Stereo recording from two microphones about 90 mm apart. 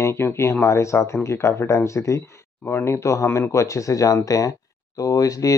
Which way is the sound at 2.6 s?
20° left (ahead or behind).